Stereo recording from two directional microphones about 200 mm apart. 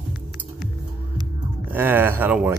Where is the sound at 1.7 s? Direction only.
10° right (ahead or behind).